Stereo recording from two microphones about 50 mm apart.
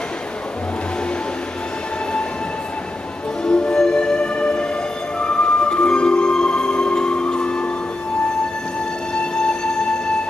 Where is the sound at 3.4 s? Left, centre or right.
Centre.